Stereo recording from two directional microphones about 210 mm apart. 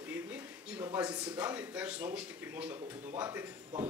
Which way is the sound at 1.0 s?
20° right (ahead or behind).